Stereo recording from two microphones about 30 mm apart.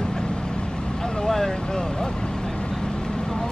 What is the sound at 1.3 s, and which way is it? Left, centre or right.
Vehicle, centre.